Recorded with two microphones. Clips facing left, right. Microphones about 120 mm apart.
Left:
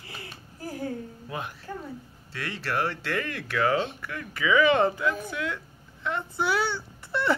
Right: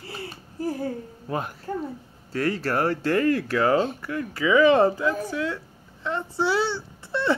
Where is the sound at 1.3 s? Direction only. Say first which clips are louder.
Right 7 dB; 40° right (ahead or behind).